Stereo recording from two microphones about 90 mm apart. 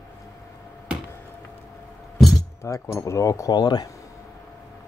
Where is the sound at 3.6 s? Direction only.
55° left (ahead or behind).